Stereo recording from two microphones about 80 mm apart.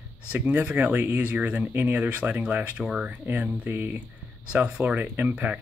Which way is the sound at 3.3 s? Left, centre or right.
Right.